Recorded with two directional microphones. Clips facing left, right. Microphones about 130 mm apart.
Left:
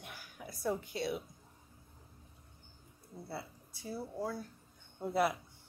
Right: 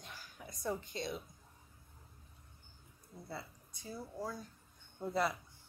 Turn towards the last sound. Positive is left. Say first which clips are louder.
# left 3 dB
turn(degrees=10)  # may be behind; listen again after turning